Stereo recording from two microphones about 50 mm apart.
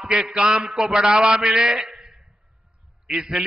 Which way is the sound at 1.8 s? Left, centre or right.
Centre.